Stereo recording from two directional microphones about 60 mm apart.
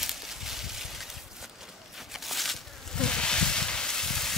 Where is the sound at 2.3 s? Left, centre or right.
Centre.